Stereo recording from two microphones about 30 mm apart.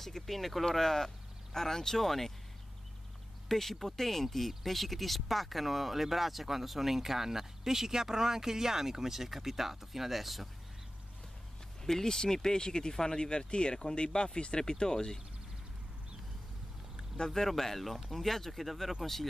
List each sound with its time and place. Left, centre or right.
0.0 s speech: centre
0.7 s speech: centre
3.4 s speech: centre
11.8 s speech: centre
17.3 s speech: centre